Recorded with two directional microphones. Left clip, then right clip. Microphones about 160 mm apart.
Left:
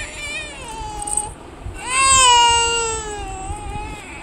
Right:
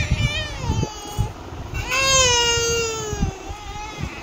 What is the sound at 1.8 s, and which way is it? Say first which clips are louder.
Baby cry: left 4 dB; 45° left (ahead or behind).